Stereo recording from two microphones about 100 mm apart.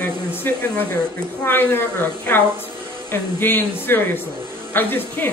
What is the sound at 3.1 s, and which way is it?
A man's voice, 20° left (ahead or behind).